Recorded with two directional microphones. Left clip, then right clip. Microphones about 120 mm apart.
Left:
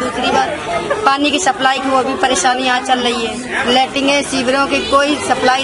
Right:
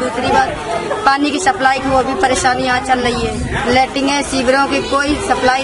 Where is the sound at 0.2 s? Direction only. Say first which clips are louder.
Right 1 dB; centre (ahead or behind).